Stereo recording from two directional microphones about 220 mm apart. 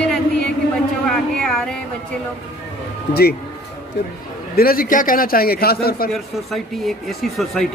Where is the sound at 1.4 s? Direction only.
5° left (ahead or behind).